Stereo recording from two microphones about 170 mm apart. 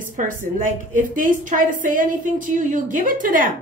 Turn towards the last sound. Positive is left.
turn(degrees=-55)  # may be behind; listen again after turning